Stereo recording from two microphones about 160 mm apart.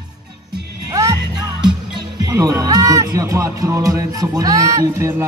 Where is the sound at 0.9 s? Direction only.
20° right (ahead or behind).